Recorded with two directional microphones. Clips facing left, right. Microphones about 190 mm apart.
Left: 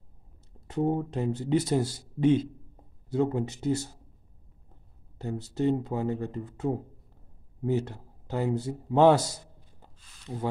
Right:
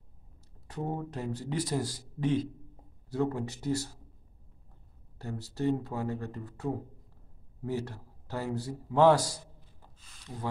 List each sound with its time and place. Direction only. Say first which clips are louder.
0.7 s a man's voice: left 8 dB; 25° left (ahead or behind)
5.2 s a man's voice: left 4 dB; 20° left (ahead or behind)